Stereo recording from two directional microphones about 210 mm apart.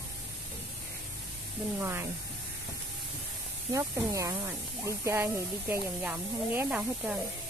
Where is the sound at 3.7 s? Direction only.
15° right (ahead or behind).